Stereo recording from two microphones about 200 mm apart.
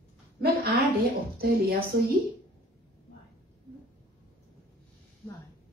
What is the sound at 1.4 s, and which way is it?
Speech, 50° right (ahead or behind).